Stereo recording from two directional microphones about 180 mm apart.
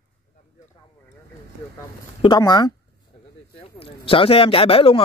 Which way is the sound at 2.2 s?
25° left (ahead or behind).